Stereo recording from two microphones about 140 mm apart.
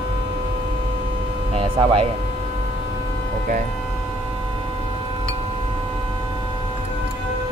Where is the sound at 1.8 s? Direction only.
35° right (ahead or behind).